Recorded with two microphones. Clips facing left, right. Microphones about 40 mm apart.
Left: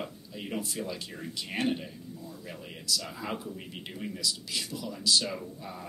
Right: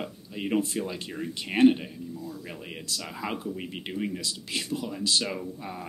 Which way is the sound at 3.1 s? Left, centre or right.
Right.